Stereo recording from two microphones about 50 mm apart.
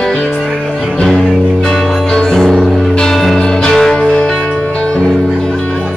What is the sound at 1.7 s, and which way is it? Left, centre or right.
Music, centre.